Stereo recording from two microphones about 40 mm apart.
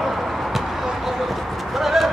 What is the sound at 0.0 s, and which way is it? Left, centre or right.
Vehicle, centre.